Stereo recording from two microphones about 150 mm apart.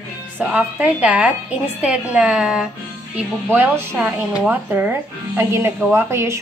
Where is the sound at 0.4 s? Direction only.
10° right (ahead or behind).